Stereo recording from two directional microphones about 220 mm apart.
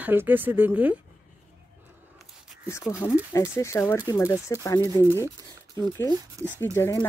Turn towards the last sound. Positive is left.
turn(degrees=10)  # may be behind; listen again after turning